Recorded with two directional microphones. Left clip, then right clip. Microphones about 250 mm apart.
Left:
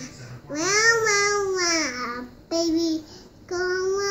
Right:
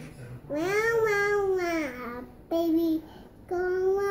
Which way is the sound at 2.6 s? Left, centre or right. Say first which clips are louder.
Left 2 dB; centre.